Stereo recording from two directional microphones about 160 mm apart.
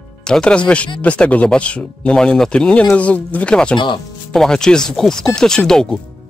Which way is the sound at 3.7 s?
30° left (ahead or behind).